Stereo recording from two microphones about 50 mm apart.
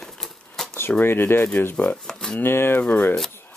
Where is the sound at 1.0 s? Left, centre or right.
Left.